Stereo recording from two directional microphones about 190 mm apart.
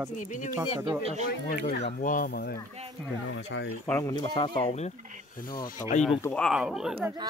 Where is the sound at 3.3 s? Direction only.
75° left (ahead or behind).